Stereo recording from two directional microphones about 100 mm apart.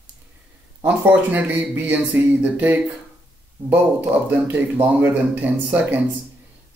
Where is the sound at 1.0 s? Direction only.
20° right (ahead or behind).